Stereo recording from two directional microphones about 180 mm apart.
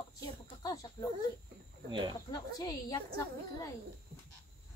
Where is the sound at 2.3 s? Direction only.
20° left (ahead or behind).